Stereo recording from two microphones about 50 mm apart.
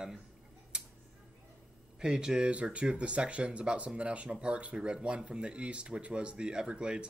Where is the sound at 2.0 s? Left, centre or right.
Centre.